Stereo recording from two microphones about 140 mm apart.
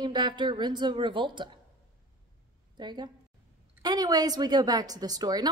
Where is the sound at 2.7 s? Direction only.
30° right (ahead or behind).